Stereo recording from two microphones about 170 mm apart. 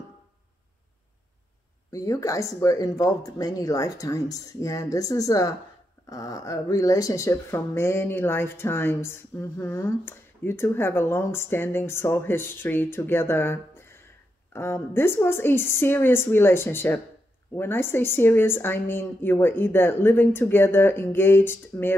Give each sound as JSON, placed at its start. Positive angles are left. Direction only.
{"t": 1.9, "sound": "speech", "side_deg": 20}